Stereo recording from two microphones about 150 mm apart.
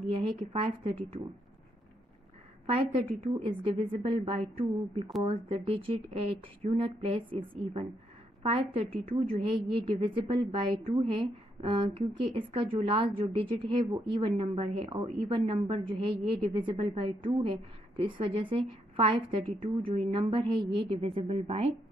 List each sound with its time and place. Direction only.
0.1 s a woman's voice: 40° right (ahead or behind)
2.6 s a woman's voice: 40° right (ahead or behind)